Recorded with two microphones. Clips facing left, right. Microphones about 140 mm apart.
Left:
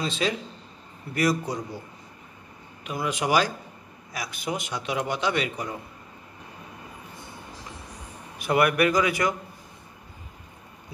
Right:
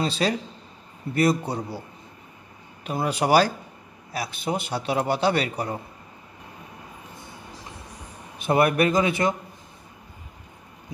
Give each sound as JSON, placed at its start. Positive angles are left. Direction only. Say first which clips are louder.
{"t": 0.0, "sound": "a man's voice", "louder": "right 3 dB", "side_deg": -35}
{"t": 3.1, "sound": "a man's voice", "louder": "right 4 dB", "side_deg": -35}
{"t": 8.4, "sound": "a man's voice", "louder": "right 2 dB", "side_deg": -25}